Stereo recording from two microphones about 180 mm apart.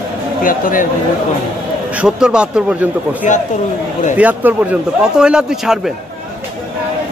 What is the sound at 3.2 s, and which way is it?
Speech, 45° left (ahead or behind).